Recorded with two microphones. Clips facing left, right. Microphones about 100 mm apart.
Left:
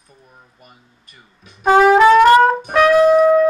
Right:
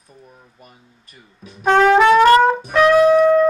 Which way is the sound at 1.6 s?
5° left (ahead or behind).